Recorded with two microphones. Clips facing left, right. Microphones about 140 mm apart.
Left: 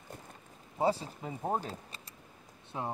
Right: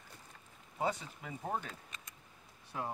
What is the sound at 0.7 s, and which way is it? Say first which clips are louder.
Speech: left 6 dB; 30° left (ahead or behind).